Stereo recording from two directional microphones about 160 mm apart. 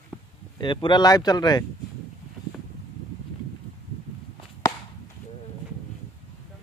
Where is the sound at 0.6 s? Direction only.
30° left (ahead or behind).